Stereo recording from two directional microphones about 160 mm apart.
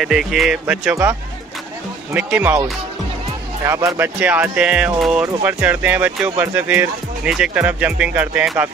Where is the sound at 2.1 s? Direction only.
10° right (ahead or behind).